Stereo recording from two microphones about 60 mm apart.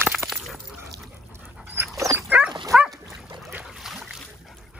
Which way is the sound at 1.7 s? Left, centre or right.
Right.